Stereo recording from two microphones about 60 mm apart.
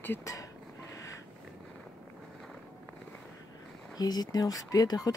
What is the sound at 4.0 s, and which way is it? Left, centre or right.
Speech, left.